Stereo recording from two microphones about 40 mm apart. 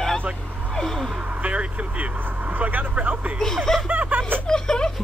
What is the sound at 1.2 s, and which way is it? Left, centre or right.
Vehicle, right.